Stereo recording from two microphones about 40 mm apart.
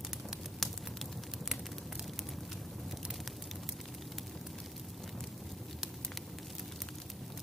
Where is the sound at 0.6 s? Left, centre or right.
Centre.